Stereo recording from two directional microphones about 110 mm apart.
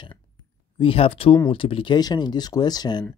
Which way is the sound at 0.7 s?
55° left (ahead or behind).